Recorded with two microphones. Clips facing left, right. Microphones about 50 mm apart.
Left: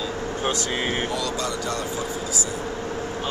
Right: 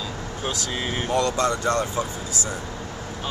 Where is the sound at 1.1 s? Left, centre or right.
Right.